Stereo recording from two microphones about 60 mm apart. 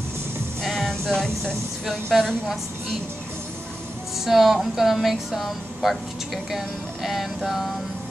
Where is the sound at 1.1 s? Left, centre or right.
Centre.